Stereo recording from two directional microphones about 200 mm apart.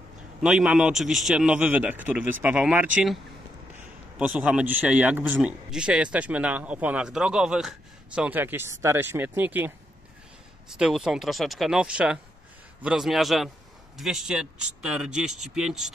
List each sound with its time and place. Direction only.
0.4 s a man's voice: 5° right (ahead or behind)
4.2 s a man's voice: 5° right (ahead or behind)
10.7 s speech: centre (ahead or behind)